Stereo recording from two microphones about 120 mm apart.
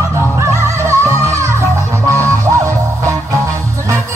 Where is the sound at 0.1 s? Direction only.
20° right (ahead or behind).